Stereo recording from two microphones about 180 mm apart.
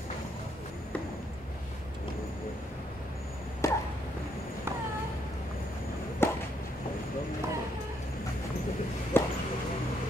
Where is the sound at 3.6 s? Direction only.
15° left (ahead or behind).